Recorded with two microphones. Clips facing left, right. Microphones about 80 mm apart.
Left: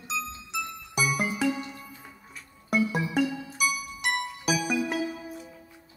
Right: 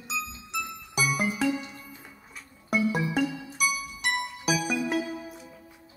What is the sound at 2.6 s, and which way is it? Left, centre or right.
Music, centre.